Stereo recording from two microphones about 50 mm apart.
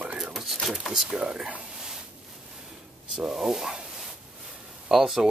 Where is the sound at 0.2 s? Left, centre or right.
Centre.